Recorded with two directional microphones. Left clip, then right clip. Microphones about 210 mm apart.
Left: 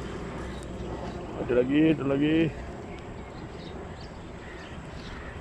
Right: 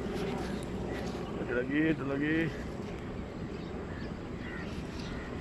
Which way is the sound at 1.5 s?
15° left (ahead or behind).